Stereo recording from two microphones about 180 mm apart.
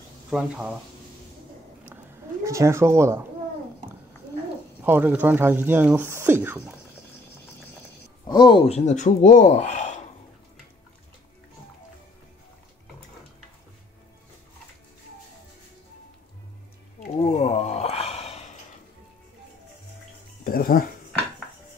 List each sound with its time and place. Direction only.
0.3 s speech: 5° right (ahead or behind)
2.4 s speech: 15° right (ahead or behind)
4.8 s speech: 10° right (ahead or behind)
8.3 s speech: 25° left (ahead or behind); by 9.9 s 40° left (ahead or behind)
17.0 s a sound: 40° left (ahead or behind)
20.4 s music: 55° left (ahead or behind)